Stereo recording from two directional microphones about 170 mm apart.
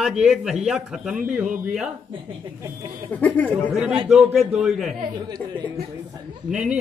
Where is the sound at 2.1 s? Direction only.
30° right (ahead or behind).